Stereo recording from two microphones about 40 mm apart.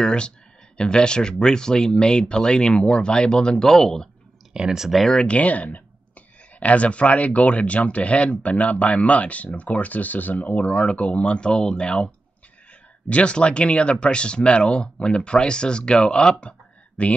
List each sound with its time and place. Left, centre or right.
0.0 s speech: left
3.6 s speech: centre
4.6 s speech: centre
5.2 s speech: left
13.1 s speech: left